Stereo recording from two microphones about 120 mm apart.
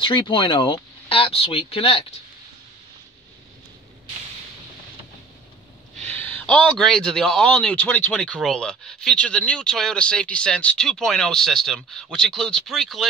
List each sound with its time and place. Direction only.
0.0 s speech: 45° left (ahead or behind)
5.9 s a man's voice: 15° left (ahead or behind)